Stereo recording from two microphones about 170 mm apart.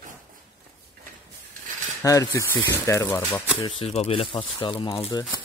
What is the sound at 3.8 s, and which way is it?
Speech, 35° left (ahead or behind).